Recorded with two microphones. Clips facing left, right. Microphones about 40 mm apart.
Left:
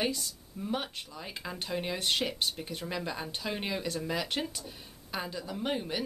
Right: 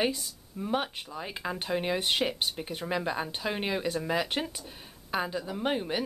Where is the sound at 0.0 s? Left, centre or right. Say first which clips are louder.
Right 3 dB; centre.